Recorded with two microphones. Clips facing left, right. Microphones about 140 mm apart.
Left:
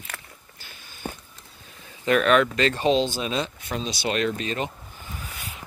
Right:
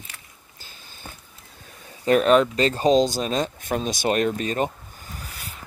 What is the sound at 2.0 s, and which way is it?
Speech, 35° right (ahead or behind).